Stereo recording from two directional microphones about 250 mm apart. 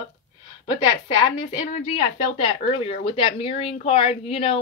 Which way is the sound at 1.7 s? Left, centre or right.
Left.